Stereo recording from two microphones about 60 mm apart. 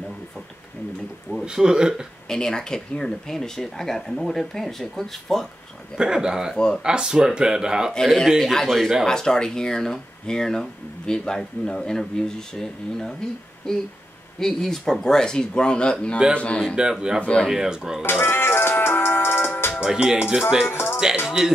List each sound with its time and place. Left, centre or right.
1.4 s speech: centre
2.2 s speech: centre
5.9 s speech: centre
6.5 s speech: centre
6.8 s speech: centre
7.9 s a man's voice: centre
9.0 s speech: centre
17.5 s speech: centre
18.0 s music: left
19.8 s speech: centre
20.7 s music: left